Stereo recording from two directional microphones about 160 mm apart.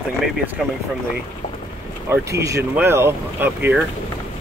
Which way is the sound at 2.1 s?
20° right (ahead or behind).